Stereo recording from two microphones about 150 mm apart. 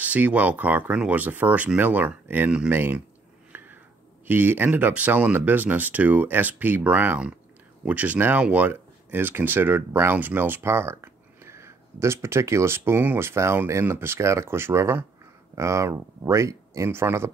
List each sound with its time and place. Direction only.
0.0 s speech: 10° right (ahead or behind)
3.5 s a sound: 10° right (ahead or behind)
4.3 s speech: 15° right (ahead or behind)